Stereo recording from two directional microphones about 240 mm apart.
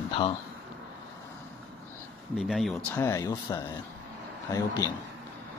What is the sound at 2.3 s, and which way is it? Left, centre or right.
Speech, centre.